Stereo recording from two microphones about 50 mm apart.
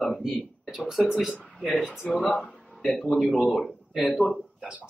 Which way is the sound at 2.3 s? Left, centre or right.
Centre.